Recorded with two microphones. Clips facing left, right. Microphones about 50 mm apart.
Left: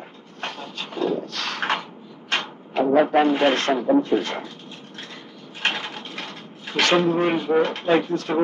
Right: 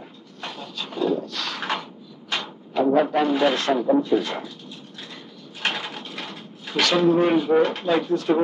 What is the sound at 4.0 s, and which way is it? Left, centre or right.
Drawer open or close, left.